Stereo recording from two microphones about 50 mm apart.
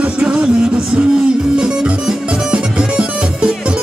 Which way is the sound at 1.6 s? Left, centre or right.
Centre.